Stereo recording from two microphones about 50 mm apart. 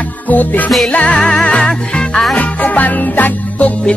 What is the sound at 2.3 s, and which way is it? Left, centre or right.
Music, left.